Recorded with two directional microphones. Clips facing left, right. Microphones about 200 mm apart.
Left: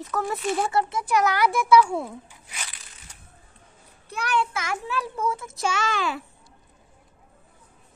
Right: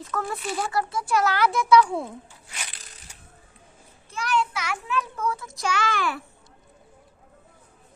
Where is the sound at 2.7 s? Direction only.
40° right (ahead or behind).